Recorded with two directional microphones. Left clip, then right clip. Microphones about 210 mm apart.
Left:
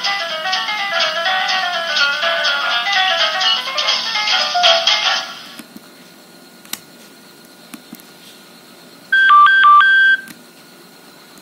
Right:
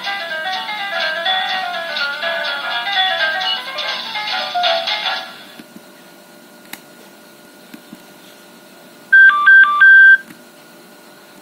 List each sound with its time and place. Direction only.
0.0 s music: 25° left (ahead or behind)
9.2 s telephone dialing: 25° left (ahead or behind)